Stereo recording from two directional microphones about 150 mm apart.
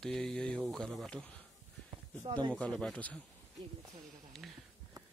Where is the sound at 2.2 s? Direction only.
30° right (ahead or behind).